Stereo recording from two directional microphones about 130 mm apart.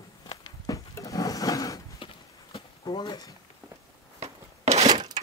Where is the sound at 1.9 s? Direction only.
40° left (ahead or behind).